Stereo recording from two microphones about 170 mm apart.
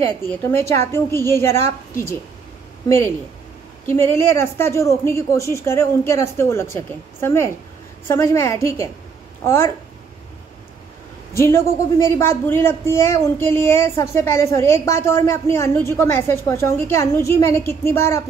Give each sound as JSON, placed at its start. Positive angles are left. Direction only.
{"t": 0.3, "sound": "speech", "side_deg": 15}
{"t": 3.8, "sound": "speech", "side_deg": 15}
{"t": 11.3, "sound": "speech", "side_deg": 15}